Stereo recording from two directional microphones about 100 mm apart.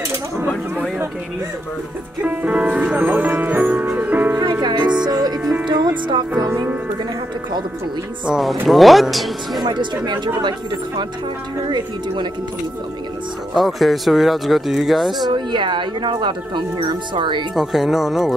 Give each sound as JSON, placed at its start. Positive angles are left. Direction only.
{"t": 2.2, "sound": "speech", "side_deg": -15}
{"t": 4.4, "sound": "music", "side_deg": -40}
{"t": 5.4, "sound": "music", "side_deg": -10}
{"t": 5.7, "sound": "speech", "side_deg": -45}
{"t": 8.3, "sound": "speech", "side_deg": 0}
{"t": 9.6, "sound": "speech", "side_deg": -45}
{"t": 13.6, "sound": "speech", "side_deg": 0}
{"t": 15.2, "sound": "speech", "side_deg": -50}
{"t": 17.6, "sound": "speech", "side_deg": -5}